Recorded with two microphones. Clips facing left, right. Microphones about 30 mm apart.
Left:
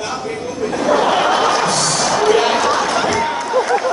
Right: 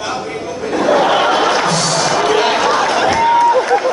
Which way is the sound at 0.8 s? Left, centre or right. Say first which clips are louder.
Right 2 dB; centre.